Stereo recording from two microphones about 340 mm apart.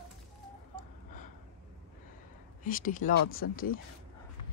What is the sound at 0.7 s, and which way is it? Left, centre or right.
Gasp, left.